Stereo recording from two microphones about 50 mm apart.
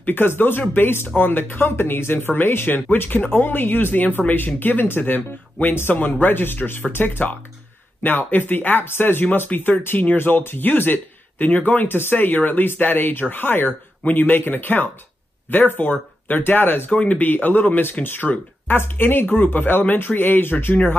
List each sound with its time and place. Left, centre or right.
0.0 s speech: left
16.9 s speech: left
17.3 s speech: left